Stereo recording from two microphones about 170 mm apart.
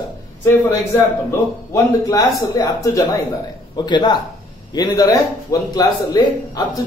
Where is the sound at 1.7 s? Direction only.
20° left (ahead or behind).